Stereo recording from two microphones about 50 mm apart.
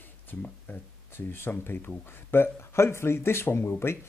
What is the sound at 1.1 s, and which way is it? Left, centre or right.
Speech, left.